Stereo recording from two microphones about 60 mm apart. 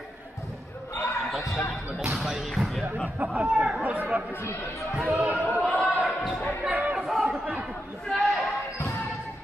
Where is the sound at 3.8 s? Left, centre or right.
Right.